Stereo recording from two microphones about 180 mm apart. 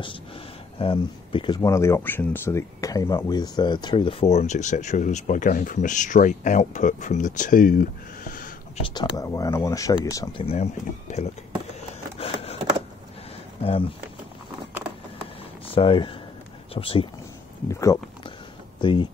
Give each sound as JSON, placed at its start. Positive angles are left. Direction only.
{"t": 0.7, "sound": "speech", "side_deg": 30}
{"t": 8.8, "sound": "speech", "side_deg": 20}
{"t": 10.4, "sound": "speech", "side_deg": 35}
{"t": 12.2, "sound": "a sound", "side_deg": 35}
{"t": 13.6, "sound": "speech", "side_deg": 30}
{"t": 15.6, "sound": "speech", "side_deg": 30}
{"t": 17.6, "sound": "speech", "side_deg": 15}